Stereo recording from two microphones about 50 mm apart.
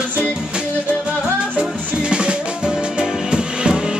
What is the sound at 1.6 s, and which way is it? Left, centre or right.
Music, centre.